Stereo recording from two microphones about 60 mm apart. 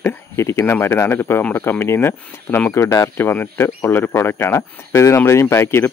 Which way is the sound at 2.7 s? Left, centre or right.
Left.